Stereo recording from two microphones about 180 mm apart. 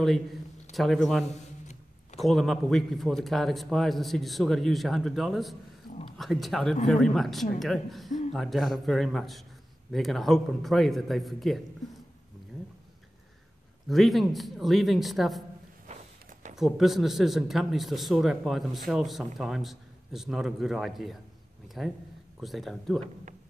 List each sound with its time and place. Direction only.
0.7 s a man's voice: centre (ahead or behind)
13.8 s a man's voice: centre (ahead or behind)
16.5 s a man's voice: centre (ahead or behind)